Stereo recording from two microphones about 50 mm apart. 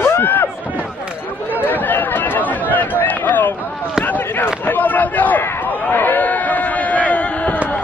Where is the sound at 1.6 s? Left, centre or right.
Left.